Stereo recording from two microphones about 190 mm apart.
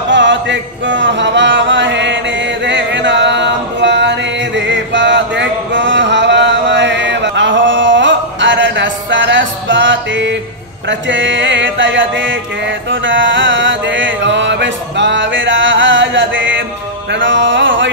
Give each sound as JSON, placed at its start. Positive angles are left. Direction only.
{"t": 0.1, "sound": "chant", "side_deg": -70}
{"t": 10.9, "sound": "mantra", "side_deg": -75}
{"t": 17.1, "sound": "music", "side_deg": -75}